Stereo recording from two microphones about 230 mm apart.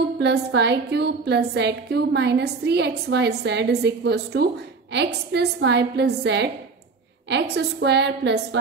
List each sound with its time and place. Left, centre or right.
0.2 s a woman's voice: right